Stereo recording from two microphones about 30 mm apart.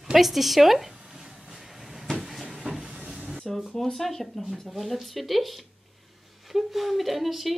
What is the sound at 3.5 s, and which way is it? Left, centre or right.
Speech, centre.